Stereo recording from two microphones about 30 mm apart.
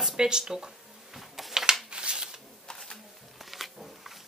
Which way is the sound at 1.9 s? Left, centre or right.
Right.